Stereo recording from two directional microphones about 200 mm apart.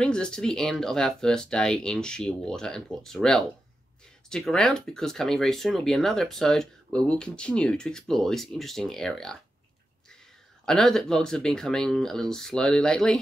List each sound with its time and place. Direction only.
0.0 s speech: 5° left (ahead or behind)
10.6 s speech: centre (ahead or behind)